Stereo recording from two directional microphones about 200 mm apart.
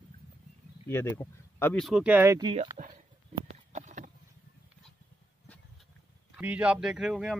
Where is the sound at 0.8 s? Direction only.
10° left (ahead or behind); by 2.5 s 15° right (ahead or behind).